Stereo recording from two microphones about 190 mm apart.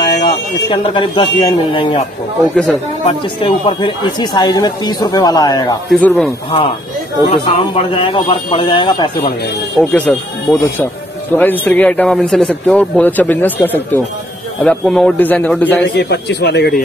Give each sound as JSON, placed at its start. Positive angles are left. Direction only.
{"t": 0.1, "sound": "speech", "side_deg": 30}
{"t": 2.4, "sound": "speech", "side_deg": 0}
{"t": 3.3, "sound": "speech", "side_deg": 25}
{"t": 5.9, "sound": "speech", "side_deg": 5}
{"t": 7.2, "sound": "speech", "side_deg": 30}
{"t": 9.8, "sound": "a man's voice", "side_deg": 5}
{"t": 16.0, "sound": "a man's voice", "side_deg": 60}